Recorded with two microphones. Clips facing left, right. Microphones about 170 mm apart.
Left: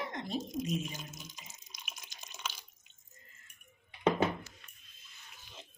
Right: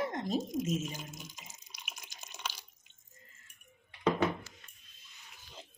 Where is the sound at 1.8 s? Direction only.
15° right (ahead or behind).